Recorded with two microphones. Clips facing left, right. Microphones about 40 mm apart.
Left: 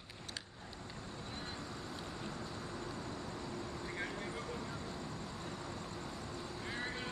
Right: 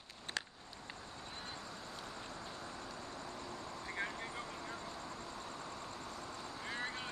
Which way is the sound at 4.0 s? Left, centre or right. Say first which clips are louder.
Right 2 dB; centre.